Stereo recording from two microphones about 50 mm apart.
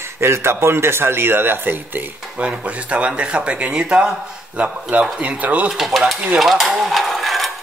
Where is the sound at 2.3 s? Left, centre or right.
Right.